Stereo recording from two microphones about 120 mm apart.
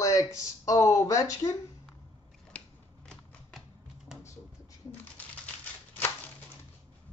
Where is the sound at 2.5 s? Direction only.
10° left (ahead or behind).